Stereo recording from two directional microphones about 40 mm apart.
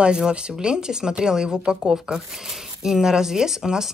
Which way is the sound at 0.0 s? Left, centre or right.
Right.